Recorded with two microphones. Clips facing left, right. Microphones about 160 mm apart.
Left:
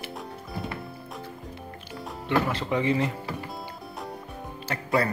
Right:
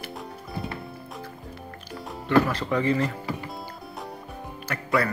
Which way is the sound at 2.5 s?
20° left (ahead or behind).